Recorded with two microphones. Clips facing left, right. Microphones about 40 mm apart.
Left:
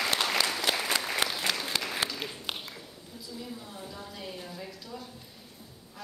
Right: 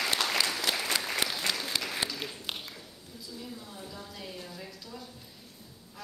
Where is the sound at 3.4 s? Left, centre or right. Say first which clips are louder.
Left 2 dB; centre.